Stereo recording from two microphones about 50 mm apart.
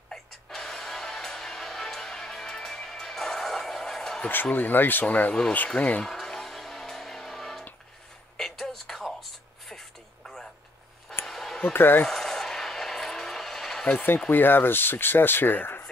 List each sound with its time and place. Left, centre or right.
0.1 s music: centre
4.5 s speech: left
5.0 s speech: left
6.0 s music: centre
8.4 s a sound: centre
11.6 s speech: left
12.1 s vehicle: centre
13.9 s speech: left